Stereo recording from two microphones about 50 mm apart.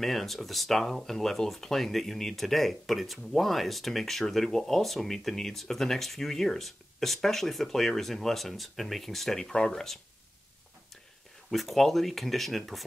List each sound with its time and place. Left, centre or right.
0.0 s speech: centre
11.5 s speech: centre